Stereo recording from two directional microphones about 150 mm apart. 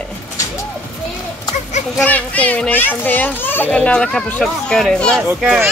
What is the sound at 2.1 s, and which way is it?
A child's voice, 10° left (ahead or behind).